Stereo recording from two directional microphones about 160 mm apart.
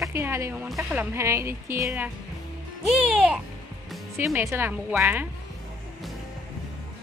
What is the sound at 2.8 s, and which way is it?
Speech, 5° right (ahead or behind).